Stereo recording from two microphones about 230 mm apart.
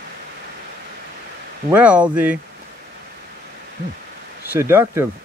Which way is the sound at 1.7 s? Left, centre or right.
Centre.